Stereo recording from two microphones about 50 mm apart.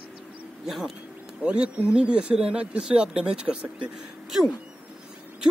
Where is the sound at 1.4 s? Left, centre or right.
Right.